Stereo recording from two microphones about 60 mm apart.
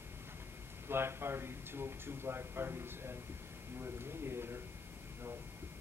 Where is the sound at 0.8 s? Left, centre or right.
Right.